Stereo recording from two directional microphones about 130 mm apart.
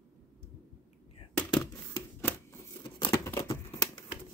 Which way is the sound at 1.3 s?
5° left (ahead or behind).